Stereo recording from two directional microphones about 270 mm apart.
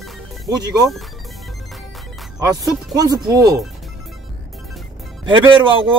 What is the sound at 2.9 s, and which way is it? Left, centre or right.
Speech, centre.